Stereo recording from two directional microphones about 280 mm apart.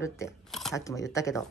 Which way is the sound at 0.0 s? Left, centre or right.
Centre.